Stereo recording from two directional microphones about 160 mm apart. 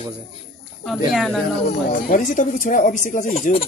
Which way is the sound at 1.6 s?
55° left (ahead or behind).